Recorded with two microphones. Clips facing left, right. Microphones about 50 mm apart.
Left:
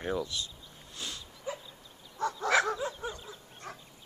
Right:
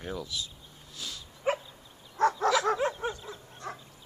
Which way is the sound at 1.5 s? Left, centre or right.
Right.